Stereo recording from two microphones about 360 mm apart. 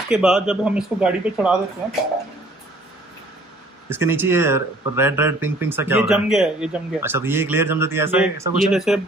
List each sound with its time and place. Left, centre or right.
0.1 s speech: centre
3.9 s speech: centre